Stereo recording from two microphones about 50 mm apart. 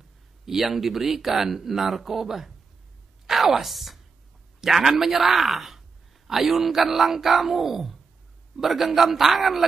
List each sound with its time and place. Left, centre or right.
0.5 s a woman's voice: centre